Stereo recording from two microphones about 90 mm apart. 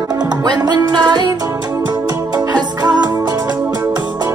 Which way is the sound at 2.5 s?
50° right (ahead or behind).